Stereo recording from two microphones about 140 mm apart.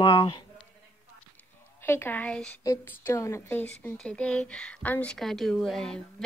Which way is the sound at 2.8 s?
20° left (ahead or behind).